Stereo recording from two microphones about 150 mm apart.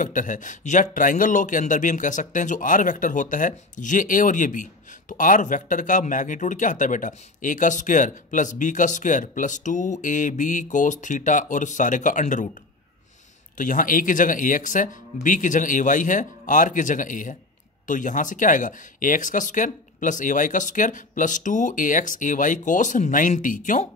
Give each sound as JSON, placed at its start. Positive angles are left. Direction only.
{"t": 0.0, "sound": "speech", "side_deg": 60}
{"t": 13.6, "sound": "speech", "side_deg": 60}